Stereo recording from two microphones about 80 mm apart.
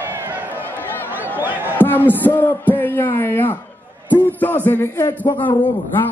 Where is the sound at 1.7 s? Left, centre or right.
Left.